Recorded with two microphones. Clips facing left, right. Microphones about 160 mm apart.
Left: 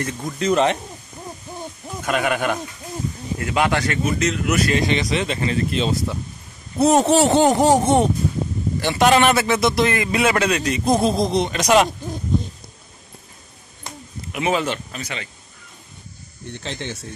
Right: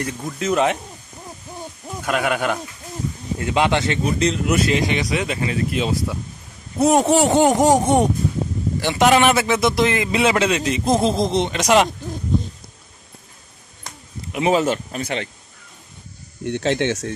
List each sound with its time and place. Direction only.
0.0 s speech: 5° right (ahead or behind)
2.0 s speech: 10° right (ahead or behind)
3.3 s speech: 25° right (ahead or behind)
4.0 s speech: 35° right (ahead or behind)
4.6 s speech: 15° right (ahead or behind)
14.3 s speech: 35° right (ahead or behind); by 15.2 s 55° right (ahead or behind)
16.4 s speech: 70° right (ahead or behind)